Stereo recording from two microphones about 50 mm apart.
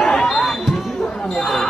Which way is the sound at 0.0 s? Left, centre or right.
Centre.